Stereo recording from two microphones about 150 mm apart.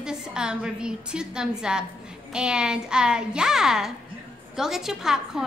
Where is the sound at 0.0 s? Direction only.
5° right (ahead or behind).